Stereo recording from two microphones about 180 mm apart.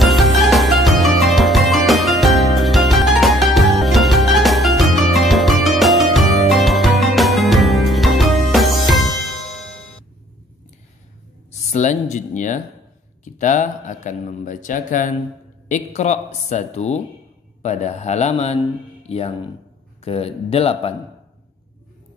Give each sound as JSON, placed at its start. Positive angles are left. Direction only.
{"t": 0.0, "sound": "music", "side_deg": 0}
{"t": 11.7, "sound": "a sound", "side_deg": 40}
{"t": 13.2, "sound": "a man's voice", "side_deg": 45}